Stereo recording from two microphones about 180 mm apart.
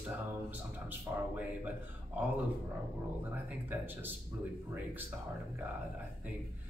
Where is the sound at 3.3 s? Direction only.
10° right (ahead or behind).